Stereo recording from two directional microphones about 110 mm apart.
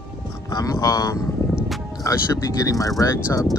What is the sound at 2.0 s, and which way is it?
Speech, 30° left (ahead or behind).